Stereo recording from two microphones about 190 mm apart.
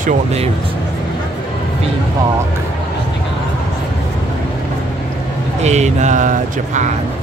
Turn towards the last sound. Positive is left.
turn(degrees=-40)  # may be behind; listen again after turning